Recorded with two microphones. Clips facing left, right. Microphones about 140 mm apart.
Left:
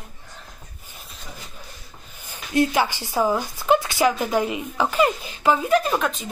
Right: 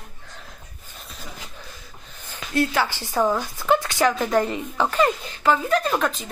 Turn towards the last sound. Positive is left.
turn(degrees=0)  # may be behind; listen again after turning